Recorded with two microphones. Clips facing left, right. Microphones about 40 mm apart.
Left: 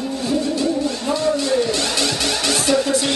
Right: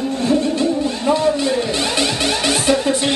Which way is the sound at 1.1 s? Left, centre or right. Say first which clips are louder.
Right 3 dB; right.